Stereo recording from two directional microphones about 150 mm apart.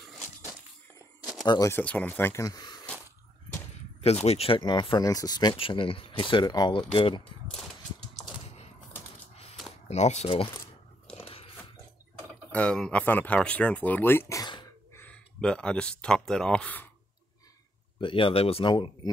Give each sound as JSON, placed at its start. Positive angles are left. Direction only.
{"t": 1.4, "sound": "speech", "side_deg": 25}
{"t": 4.0, "sound": "speech", "side_deg": 45}
{"t": 9.8, "sound": "speech", "side_deg": 50}
{"t": 11.1, "sound": "dog", "side_deg": 40}
{"t": 12.4, "sound": "speech", "side_deg": 5}
{"t": 18.0, "sound": "speech", "side_deg": 35}